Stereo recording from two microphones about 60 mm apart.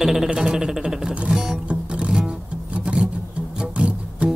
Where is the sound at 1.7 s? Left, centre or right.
Centre.